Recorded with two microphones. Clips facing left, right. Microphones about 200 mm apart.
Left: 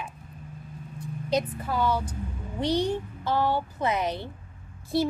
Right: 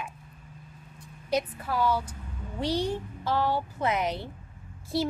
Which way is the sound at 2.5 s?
5° right (ahead or behind).